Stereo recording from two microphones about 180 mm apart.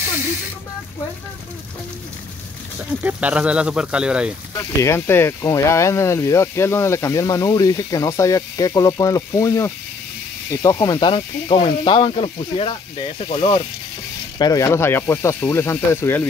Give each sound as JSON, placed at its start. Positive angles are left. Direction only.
{"t": 2.9, "sound": "speech", "side_deg": -10}
{"t": 4.8, "sound": "speech", "side_deg": 15}
{"t": 14.4, "sound": "speech", "side_deg": 15}